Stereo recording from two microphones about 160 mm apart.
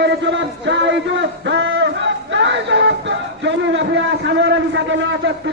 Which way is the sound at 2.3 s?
90° right.